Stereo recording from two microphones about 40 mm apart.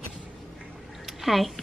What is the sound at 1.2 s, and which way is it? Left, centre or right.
Speech, centre.